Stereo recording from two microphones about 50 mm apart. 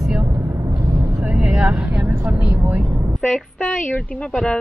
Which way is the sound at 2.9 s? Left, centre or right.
Right.